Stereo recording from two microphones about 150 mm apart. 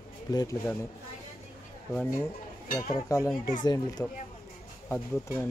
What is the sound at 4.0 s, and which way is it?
Speech, 10° left (ahead or behind).